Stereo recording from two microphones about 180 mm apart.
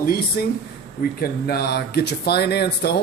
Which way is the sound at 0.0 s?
55° left (ahead or behind).